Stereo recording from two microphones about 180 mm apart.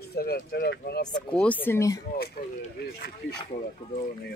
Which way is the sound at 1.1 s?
5° left (ahead or behind).